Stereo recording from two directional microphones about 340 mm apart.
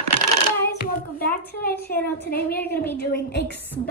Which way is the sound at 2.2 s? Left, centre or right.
Left.